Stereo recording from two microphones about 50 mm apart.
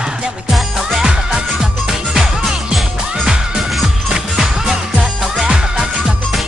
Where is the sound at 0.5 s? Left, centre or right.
Centre.